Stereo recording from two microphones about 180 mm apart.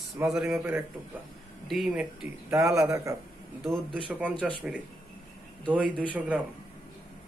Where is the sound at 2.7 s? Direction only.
15° right (ahead or behind).